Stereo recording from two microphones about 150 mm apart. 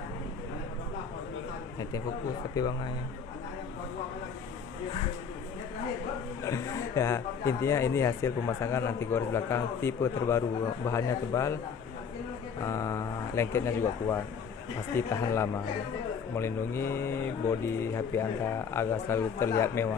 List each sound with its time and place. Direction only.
6.4 s speech: 20° left (ahead or behind)
12.6 s speech: 20° left (ahead or behind)